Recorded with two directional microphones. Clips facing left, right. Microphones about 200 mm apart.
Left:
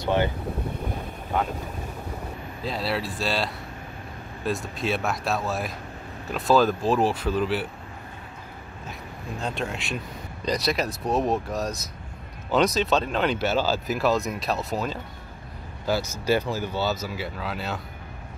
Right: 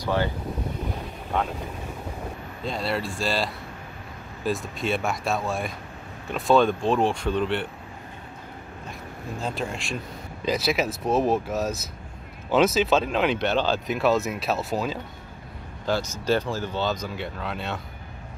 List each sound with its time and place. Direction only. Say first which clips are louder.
0.0 s speech: left 2 dB; 20° left (ahead or behind)
2.6 s speech: even; centre (ahead or behind)
9.4 s speech: even; centre (ahead or behind)